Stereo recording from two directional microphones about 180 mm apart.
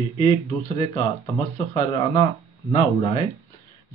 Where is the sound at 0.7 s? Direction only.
25° left (ahead or behind).